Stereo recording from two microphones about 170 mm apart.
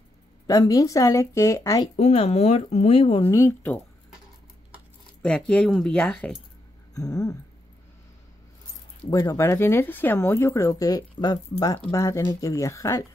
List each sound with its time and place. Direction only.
0.5 s speech: 20° left (ahead or behind)
2.0 s speech: 40° left (ahead or behind)
3.3 s a woman's voice: 15° left (ahead or behind)
5.2 s speech: 5° left (ahead or behind)
6.9 s a sound: 20° left (ahead or behind)
9.1 s a woman's voice: 20° left (ahead or behind)